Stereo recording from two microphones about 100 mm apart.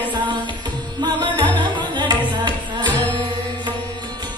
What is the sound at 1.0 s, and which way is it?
Music, 50° right (ahead or behind).